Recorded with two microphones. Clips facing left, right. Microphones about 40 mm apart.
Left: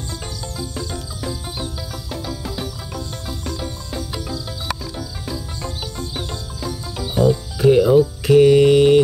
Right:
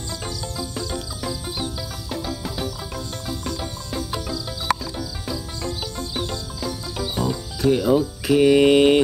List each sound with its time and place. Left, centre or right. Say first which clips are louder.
0.4 s music: left 1 dB; centre
5.2 s music: even; centre
7.5 s speech: left 5 dB; centre
8.5 s mantra: left 3 dB; centre